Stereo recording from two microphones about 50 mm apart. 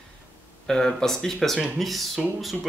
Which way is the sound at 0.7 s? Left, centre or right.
Centre.